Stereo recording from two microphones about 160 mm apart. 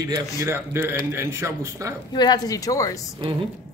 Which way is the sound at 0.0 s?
15° right (ahead or behind).